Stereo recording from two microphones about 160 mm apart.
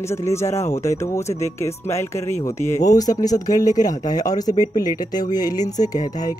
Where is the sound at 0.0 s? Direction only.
15° left (ahead or behind).